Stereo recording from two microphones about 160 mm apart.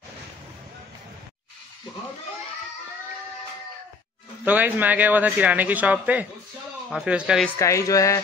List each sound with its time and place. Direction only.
4.5 s speech: 10° right (ahead or behind)
7.4 s speech: 20° left (ahead or behind)